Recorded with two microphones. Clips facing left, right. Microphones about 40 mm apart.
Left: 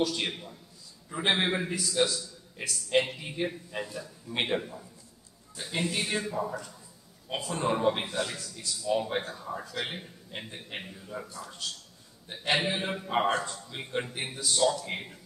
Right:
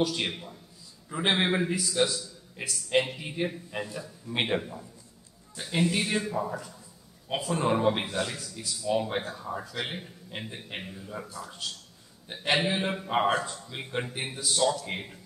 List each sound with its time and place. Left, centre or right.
0.0 s a man's voice: centre